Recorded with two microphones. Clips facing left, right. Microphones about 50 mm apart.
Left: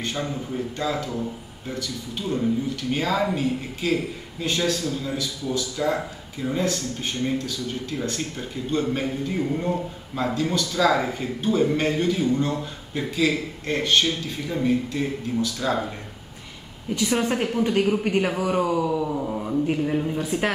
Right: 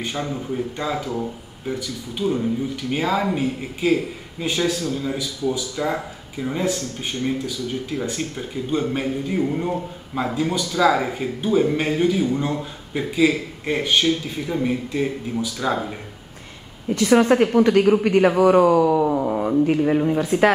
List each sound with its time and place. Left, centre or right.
0.0 s speech: centre
16.9 s a man's voice: right
17.6 s a man's voice: right
18.0 s a man's voice: right
18.9 s a sound: right
19.7 s a man's voice: right